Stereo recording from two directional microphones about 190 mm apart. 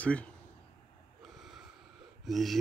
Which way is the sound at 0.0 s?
5° left (ahead or behind).